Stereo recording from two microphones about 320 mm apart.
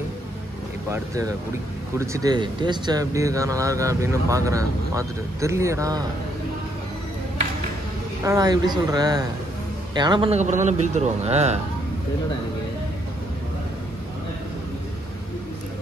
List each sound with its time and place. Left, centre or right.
0.8 s speech: centre
8.2 s speech: centre